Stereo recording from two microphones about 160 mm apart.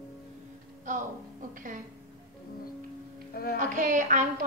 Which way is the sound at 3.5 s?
50° right (ahead or behind).